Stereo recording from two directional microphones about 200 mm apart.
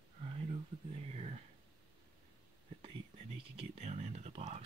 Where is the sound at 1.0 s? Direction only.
30° right (ahead or behind).